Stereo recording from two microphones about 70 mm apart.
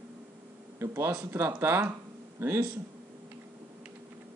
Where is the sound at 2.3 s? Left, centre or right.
Right.